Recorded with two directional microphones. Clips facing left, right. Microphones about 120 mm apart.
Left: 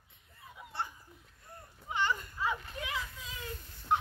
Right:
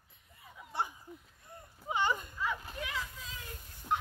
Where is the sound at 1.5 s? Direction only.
15° right (ahead or behind).